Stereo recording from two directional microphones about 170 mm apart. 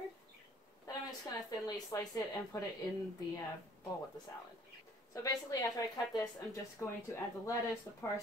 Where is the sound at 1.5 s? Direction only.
20° left (ahead or behind).